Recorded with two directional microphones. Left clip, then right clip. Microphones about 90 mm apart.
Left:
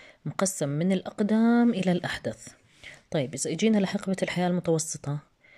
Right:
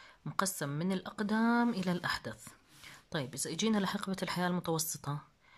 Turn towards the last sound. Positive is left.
turn(degrees=20)  # may be behind; listen again after turning